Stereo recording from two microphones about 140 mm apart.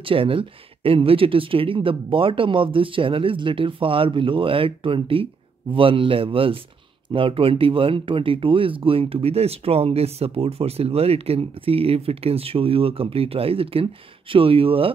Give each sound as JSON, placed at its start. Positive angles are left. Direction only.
{"t": 0.0, "sound": "speech", "side_deg": -40}